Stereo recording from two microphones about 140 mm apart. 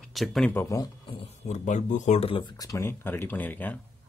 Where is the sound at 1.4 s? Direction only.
55° left (ahead or behind); by 3.8 s 10° left (ahead or behind).